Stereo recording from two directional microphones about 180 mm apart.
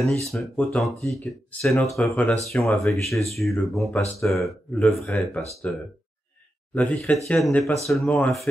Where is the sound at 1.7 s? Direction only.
Centre (ahead or behind).